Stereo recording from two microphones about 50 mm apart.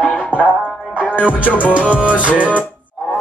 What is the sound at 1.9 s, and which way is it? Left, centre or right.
Music, right.